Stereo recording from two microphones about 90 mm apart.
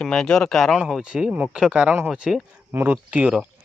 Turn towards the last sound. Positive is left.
turn(degrees=-10)  # may be behind; listen again after turning